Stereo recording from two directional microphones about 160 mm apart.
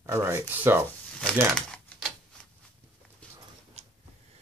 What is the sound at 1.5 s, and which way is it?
Typewriter, 5° left (ahead or behind).